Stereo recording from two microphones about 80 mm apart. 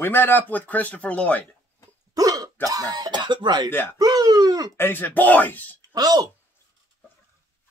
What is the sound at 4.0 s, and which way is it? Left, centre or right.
Speech, right.